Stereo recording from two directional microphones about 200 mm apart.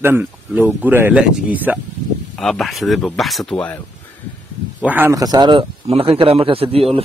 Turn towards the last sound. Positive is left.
turn(degrees=-30)  # may be behind; listen again after turning